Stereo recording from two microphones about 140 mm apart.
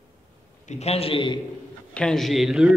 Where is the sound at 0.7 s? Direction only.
50° left (ahead or behind).